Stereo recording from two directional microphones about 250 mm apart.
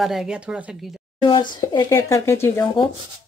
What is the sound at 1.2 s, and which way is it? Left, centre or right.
Speech, centre.